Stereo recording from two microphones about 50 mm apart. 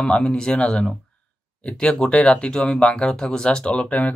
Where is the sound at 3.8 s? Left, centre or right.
Left.